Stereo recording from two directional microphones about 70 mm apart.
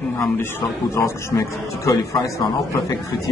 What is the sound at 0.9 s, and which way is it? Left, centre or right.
A man's voice, left.